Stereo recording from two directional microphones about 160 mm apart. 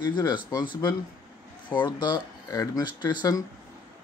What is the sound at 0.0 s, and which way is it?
Speech, 30° left (ahead or behind).